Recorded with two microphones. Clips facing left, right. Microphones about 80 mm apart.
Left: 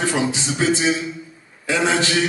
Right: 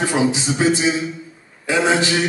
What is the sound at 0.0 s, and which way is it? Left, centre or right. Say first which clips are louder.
A man's voice: right 3 dB; centre.